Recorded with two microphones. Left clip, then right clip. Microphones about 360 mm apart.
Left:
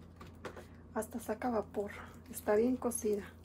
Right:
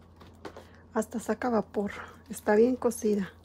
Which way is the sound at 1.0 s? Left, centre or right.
Right.